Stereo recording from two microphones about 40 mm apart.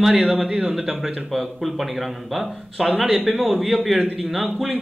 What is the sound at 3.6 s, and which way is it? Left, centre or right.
Speech, centre.